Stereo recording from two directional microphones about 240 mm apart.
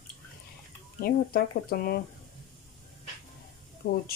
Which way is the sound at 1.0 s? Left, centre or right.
Left.